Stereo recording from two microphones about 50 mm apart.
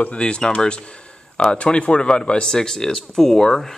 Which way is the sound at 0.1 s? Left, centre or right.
Centre.